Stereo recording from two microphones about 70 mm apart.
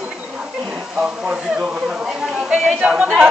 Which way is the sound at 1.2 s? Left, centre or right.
Centre.